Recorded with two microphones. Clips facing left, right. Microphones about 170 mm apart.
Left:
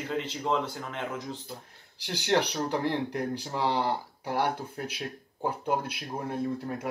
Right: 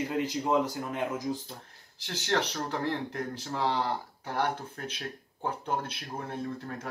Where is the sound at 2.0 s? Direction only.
15° left (ahead or behind).